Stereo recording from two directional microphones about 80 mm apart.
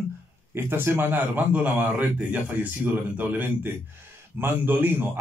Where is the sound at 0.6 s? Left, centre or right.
Right.